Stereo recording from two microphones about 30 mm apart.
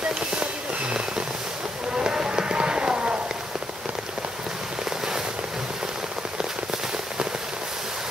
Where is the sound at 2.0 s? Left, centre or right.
Right.